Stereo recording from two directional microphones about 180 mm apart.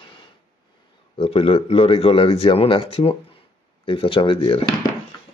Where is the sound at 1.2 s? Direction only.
30° left (ahead or behind).